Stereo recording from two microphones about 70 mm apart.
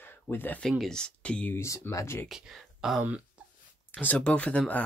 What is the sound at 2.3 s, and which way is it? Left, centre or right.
Speech, centre.